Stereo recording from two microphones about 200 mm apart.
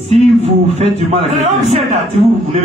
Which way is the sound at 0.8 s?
35° right (ahead or behind).